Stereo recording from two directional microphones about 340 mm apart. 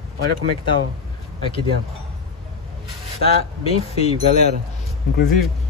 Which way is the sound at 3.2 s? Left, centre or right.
Centre.